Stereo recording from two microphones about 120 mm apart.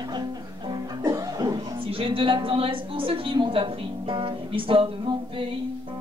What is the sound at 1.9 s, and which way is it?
Speech, 50° right (ahead or behind).